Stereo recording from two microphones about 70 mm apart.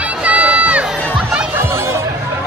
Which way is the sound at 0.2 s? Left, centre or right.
Centre.